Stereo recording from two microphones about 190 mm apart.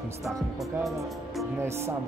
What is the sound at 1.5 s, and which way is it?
Speech, 15° right (ahead or behind).